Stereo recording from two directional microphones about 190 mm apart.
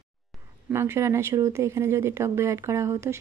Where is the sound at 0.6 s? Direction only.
15° right (ahead or behind).